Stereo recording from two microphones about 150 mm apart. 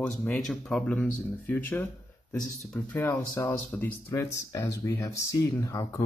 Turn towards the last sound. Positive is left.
turn(degrees=20)  # may be behind; listen again after turning